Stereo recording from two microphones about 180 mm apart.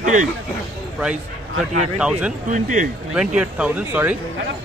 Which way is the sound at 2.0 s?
5° right (ahead or behind).